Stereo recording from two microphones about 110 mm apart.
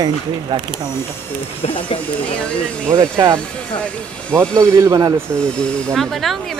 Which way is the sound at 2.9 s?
30° right (ahead or behind).